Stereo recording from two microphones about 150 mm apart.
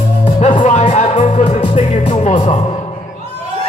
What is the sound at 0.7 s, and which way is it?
Music, 50° left (ahead or behind).